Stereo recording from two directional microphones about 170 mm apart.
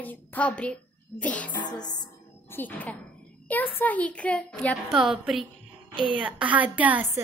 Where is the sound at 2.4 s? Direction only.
10° left (ahead or behind).